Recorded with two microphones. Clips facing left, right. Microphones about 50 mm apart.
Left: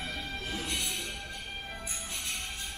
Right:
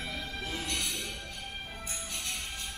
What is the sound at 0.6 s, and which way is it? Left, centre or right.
Music, left.